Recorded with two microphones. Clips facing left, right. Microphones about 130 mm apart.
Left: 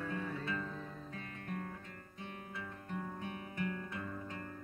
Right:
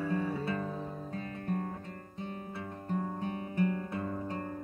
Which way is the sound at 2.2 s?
35° right (ahead or behind).